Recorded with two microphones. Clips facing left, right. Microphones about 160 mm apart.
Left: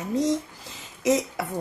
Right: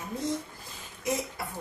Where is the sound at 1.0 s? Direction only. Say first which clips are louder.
Left 9 dB; 90° left.